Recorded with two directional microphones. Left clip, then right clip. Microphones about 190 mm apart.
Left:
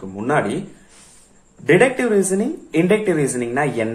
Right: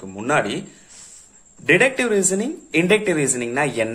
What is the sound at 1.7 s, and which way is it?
Speech, 30° right (ahead or behind).